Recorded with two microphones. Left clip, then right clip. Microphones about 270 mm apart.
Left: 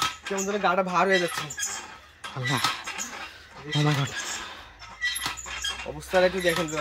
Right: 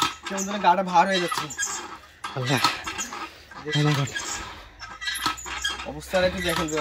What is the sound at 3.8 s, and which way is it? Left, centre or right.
Speech, centre.